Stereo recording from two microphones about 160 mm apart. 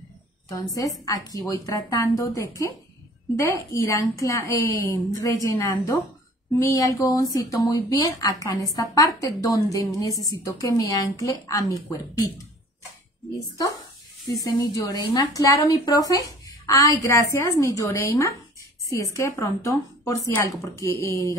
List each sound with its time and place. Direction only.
0.5 s a woman's voice: 20° left (ahead or behind)
14.4 s a woman's voice: 20° left (ahead or behind)